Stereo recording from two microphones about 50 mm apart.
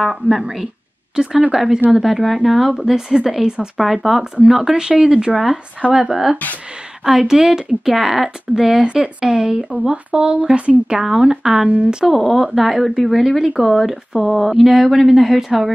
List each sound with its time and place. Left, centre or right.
0.0 s speech: centre
8.8 s speech: centre
12.1 s speech: centre